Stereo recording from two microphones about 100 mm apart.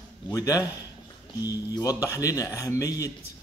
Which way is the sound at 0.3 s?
35° left (ahead or behind).